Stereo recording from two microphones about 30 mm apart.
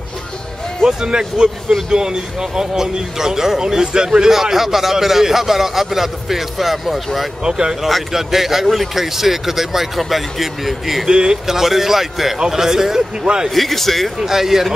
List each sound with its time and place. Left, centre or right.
0.8 s a man's voice: right
4.3 s speech: centre
7.4 s a man's voice: right
8.1 s speech: centre
11.1 s a man's voice: right
11.4 s speech: centre
13.6 s a man's voice: centre
14.2 s speech: centre